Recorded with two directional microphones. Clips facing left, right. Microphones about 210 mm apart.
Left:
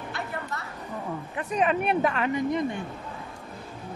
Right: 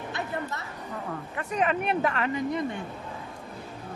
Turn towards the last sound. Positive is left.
turn(degrees=20)  # may be behind; listen again after turning